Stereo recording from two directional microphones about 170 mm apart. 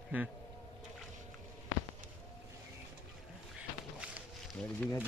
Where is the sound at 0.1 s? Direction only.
10° right (ahead or behind).